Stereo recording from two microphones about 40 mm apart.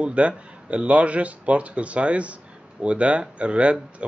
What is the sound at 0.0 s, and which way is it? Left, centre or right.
A man's voice, right.